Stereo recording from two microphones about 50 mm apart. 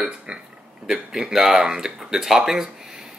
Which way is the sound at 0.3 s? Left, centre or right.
Centre.